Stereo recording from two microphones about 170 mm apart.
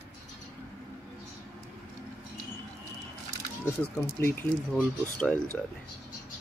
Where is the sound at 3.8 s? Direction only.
10° left (ahead or behind).